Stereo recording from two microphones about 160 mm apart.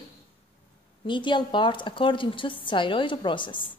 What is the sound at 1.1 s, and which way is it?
Speech, 30° left (ahead or behind).